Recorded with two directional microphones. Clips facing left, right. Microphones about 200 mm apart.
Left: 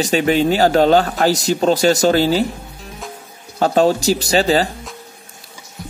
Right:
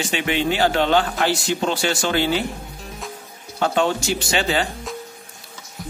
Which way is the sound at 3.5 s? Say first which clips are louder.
Left 6 dB; 40° left (ahead or behind).